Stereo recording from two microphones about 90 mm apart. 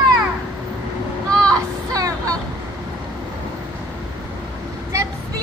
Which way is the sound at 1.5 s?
40° right (ahead or behind).